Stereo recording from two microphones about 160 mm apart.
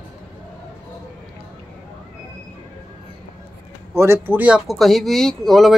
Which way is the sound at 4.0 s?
15° right (ahead or behind).